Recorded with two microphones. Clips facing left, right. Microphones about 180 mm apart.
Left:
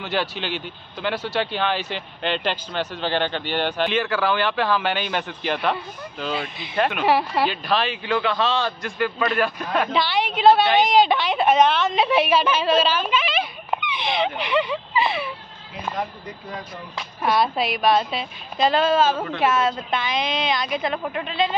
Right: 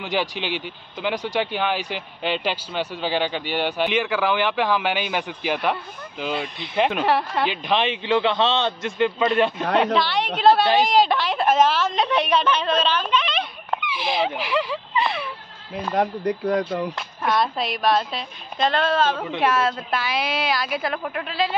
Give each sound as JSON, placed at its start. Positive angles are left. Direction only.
{"t": 0.0, "sound": "speech", "side_deg": -15}
{"t": 6.3, "sound": "a woman's voice", "side_deg": 0}
{"t": 7.4, "sound": "a man's voice", "side_deg": -20}
{"t": 9.9, "sound": "a woman's voice", "side_deg": 0}
{"t": 16.3, "sound": "speech", "side_deg": -75}
{"t": 16.9, "sound": "a woman's voice", "side_deg": 5}